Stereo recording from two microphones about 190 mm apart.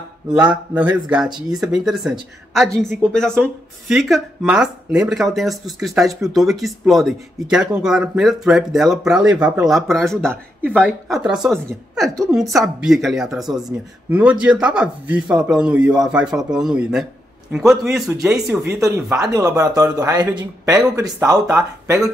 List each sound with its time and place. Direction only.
0.3 s a woman's voice: 5° right (ahead or behind)
18.8 s speech: 15° right (ahead or behind)